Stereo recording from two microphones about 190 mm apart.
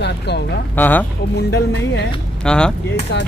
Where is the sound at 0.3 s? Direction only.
60° left (ahead or behind).